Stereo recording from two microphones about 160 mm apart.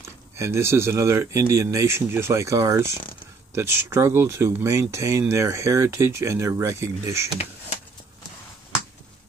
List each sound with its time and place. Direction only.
0.0 s speech: 15° right (ahead or behind)